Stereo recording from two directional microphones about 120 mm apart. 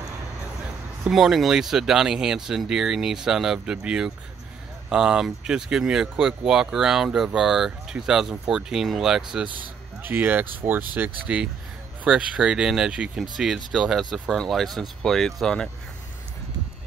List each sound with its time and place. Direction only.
1.0 s speech: centre (ahead or behind)
10.0 s speech: 15° right (ahead or behind); by 15.7 s 5° left (ahead or behind)